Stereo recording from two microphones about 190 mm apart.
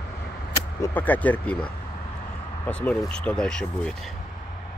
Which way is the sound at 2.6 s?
5° left (ahead or behind).